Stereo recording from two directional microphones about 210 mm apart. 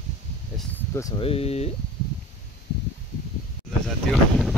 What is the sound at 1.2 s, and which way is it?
Speech, 30° left (ahead or behind).